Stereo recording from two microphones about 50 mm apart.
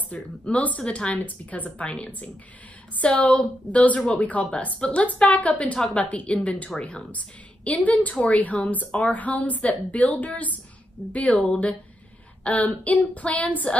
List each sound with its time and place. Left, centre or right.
0.1 s a woman's voice: left
1.1 s a woman's voice: left